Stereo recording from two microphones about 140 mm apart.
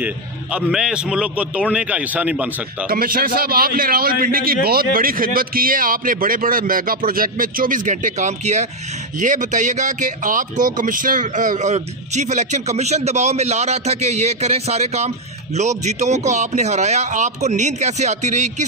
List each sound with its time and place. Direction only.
0.0 s a man's voice: 5° right (ahead or behind)
2.9 s a man's voice: 90° right; by 18.5 s 55° right (ahead or behind)